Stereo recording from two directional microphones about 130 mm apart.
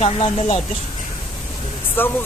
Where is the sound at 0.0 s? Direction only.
50° left (ahead or behind).